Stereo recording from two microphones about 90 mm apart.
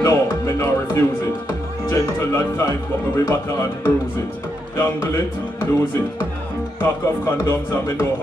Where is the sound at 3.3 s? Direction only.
30° left (ahead or behind).